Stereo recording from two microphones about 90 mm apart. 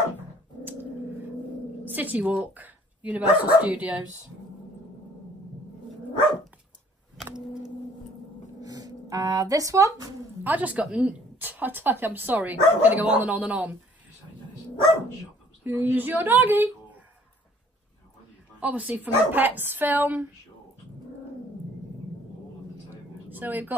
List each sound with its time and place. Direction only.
1.9 s speech: 20° right (ahead or behind)
8.5 s speech: 45° right (ahead or behind)
10.4 s a woman's voice: 20° right (ahead or behind)
15.6 s speech: 20° right (ahead or behind)
18.6 s a woman's voice: 15° right (ahead or behind)
23.3 s a woman's voice: 20° right (ahead or behind)